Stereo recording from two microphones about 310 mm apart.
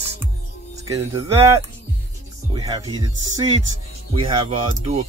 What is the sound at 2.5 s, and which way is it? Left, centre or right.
Speech, centre.